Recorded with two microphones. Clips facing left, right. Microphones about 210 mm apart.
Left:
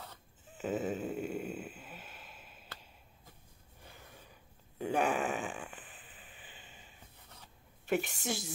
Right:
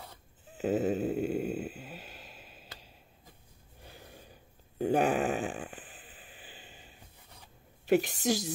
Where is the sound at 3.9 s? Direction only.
35° right (ahead or behind).